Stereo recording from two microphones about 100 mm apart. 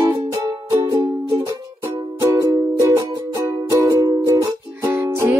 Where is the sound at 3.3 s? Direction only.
35° right (ahead or behind).